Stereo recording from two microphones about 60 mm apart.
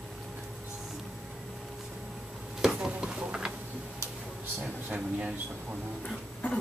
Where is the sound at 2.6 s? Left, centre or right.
Centre.